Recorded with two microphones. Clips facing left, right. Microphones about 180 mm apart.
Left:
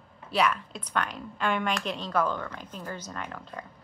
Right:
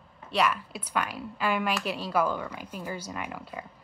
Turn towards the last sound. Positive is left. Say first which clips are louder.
# right 1 dB
turn(degrees=-10)  # may be behind; listen again after turning